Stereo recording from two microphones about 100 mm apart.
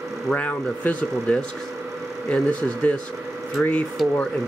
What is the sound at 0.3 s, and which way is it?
Speech, 15° left (ahead or behind).